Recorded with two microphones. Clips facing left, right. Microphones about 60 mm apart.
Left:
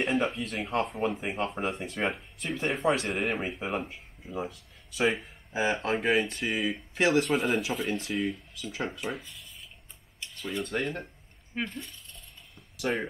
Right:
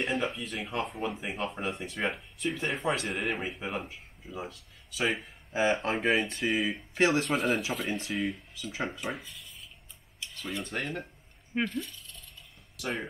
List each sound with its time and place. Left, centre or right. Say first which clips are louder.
0.0 s speech: left 3 dB; centre
5.5 s speech: right 1 dB; centre
5.9 s speech: left 1 dB; centre
8.7 s speech: even; right
9.1 s speech: left 1 dB; centre
10.4 s speech: left 4 dB; centre
12.9 s speech: left 4 dB; left